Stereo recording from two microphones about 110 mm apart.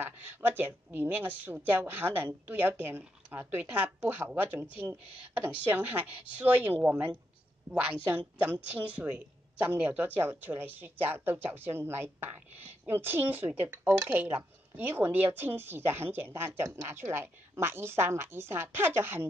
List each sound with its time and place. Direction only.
0.0 s a woman's voice: 20° right (ahead or behind)